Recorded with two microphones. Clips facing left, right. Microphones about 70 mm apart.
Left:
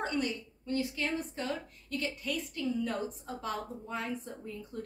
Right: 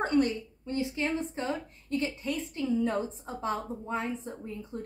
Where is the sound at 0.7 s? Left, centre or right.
Right.